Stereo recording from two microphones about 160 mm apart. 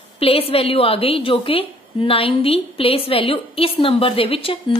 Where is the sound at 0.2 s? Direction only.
35° left (ahead or behind).